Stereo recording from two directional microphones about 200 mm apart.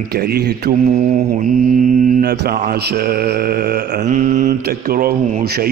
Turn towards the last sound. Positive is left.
turn(degrees=-50)  # may be behind; listen again after turning